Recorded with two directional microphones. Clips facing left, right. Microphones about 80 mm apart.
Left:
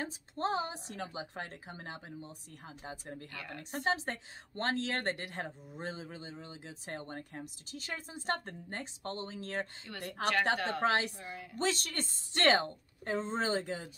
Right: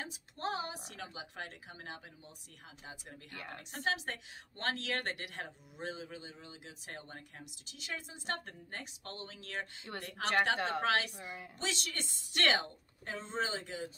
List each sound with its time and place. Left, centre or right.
0.0 s a woman's voice: left
3.3 s a woman's voice: right
3.7 s a woman's voice: left
9.9 s a woman's voice: right
10.8 s a woman's voice: left